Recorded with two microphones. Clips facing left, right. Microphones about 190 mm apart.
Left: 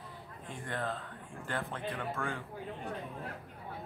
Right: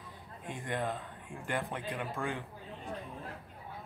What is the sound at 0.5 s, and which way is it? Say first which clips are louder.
Speech: right 2 dB; 15° right (ahead or behind).